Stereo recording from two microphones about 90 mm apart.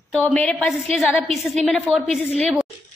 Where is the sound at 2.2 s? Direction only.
20° left (ahead or behind).